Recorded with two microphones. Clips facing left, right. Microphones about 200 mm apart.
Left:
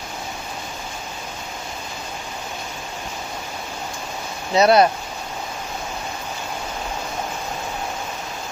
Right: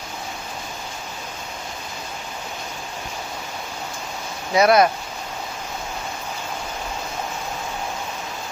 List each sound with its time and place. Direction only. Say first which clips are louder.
4.6 s speech: left 1 dB; 30° left (ahead or behind)